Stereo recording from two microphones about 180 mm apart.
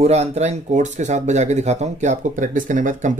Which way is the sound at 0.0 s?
35° right (ahead or behind).